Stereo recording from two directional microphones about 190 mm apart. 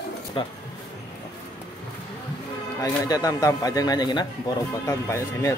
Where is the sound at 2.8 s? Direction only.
20° left (ahead or behind).